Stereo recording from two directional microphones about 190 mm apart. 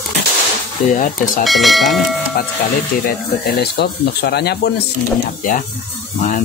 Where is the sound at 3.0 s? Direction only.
50° left (ahead or behind).